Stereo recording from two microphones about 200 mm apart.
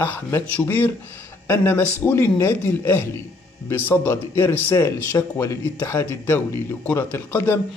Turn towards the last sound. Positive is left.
turn(degrees=10)  # may be behind; listen again after turning